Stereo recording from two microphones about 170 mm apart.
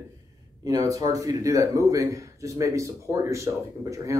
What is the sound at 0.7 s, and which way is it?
A man's voice, 20° right (ahead or behind).